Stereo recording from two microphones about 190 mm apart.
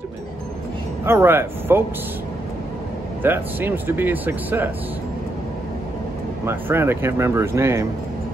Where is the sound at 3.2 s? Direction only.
10° right (ahead or behind).